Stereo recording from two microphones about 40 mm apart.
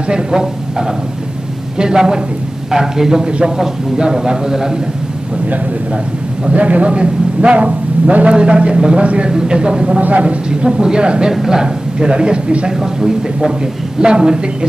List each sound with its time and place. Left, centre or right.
0.1 s a man's voice: centre
6.4 s a man's voice: right
9.9 s a man's voice: right
10.5 s a man's voice: right
12.7 s a man's voice: centre